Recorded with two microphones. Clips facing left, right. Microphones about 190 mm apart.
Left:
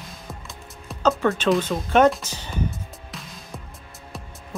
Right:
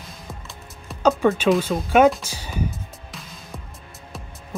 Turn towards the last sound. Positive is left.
turn(degrees=0)  # may be behind; listen again after turning